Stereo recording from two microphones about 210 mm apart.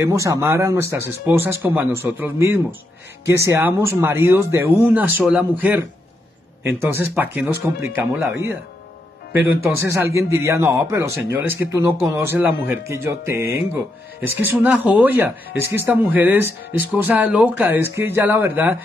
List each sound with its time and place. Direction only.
0.0 s speech: 15° right (ahead or behind)
9.8 s speech: 15° right (ahead or behind)